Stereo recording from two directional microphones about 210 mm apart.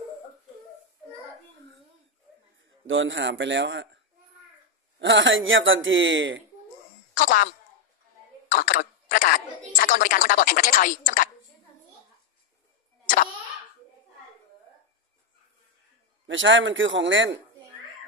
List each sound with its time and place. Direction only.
2.9 s speech: 60° right (ahead or behind)
8.5 s a woman's voice: 45° left (ahead or behind)
16.3 s speech: 65° right (ahead or behind)